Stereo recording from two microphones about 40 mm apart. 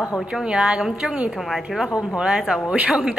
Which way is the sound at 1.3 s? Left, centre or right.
Centre.